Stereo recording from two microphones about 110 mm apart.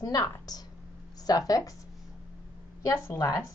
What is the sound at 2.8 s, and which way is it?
Speech, 30° left (ahead or behind).